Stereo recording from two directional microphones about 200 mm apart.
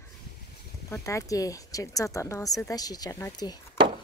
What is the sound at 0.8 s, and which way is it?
Speech, 15° left (ahead or behind).